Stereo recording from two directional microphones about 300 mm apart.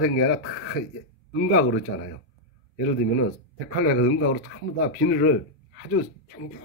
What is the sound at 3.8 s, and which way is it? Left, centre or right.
Speech, left.